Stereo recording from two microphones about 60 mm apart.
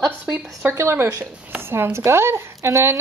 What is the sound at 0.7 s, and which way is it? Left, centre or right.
A woman's voice, right.